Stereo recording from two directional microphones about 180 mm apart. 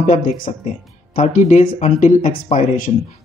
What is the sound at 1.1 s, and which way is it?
Speech, 45° left (ahead or behind).